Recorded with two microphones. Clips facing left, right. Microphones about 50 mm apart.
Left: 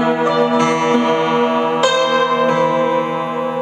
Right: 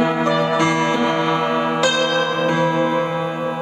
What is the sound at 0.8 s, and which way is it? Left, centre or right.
Music, left.